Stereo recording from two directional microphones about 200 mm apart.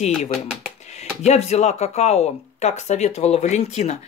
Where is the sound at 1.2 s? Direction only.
35° left (ahead or behind).